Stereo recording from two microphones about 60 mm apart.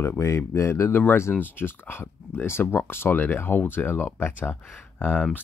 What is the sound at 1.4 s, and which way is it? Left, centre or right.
Speech, left.